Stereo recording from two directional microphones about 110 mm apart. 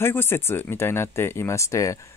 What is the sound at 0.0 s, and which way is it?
Speech, 20° left (ahead or behind).